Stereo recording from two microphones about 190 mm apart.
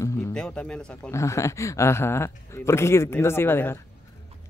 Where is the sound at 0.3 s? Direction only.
5° left (ahead or behind).